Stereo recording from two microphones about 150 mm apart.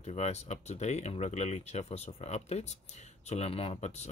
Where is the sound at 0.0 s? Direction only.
45° left (ahead or behind).